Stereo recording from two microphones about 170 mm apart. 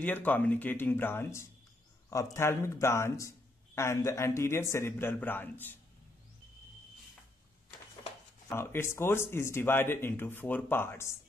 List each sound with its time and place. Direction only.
0.0 s a man's voice: 10° left (ahead or behind)
8.5 s a man's voice: 15° left (ahead or behind)